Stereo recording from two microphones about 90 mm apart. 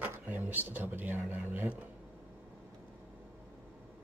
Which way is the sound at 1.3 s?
20° right (ahead or behind).